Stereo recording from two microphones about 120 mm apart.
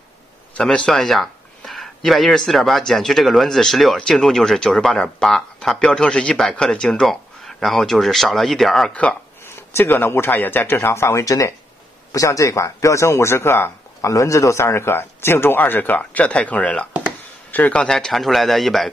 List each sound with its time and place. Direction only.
0.6 s speech: 5° left (ahead or behind)
9.6 s speech: 20° left (ahead or behind); by 18.9 s centre (ahead or behind)